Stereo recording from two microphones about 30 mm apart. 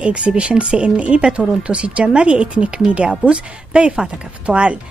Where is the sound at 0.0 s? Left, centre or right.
Right.